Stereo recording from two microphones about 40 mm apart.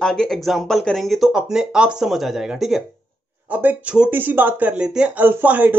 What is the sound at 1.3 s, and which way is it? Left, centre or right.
Speech, centre.